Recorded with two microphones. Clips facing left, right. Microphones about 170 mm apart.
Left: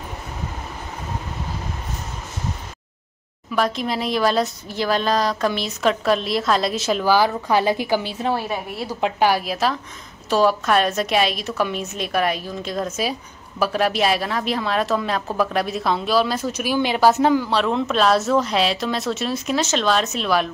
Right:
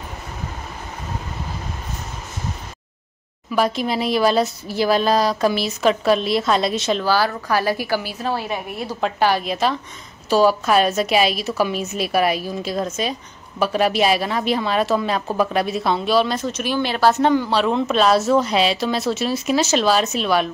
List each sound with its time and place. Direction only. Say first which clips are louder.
3.5 s a woman's voice: right 2 dB; 5° right (ahead or behind); by 8.4 s 25° left (ahead or behind)
8.4 s a woman's voice: even; 15° right (ahead or behind)
9.0 s a woman's voice: even; 10° left (ahead or behind)